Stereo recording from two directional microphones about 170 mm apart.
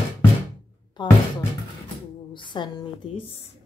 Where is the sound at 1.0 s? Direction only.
25° left (ahead or behind).